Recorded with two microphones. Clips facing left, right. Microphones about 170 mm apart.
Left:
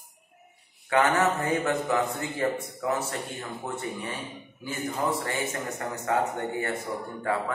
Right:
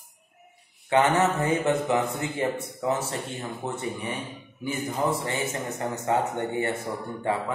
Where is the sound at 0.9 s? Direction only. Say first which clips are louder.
Right 2 dB; 25° right (ahead or behind).